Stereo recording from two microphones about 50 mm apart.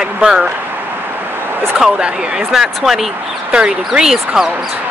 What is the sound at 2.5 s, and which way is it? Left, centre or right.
Speech, centre.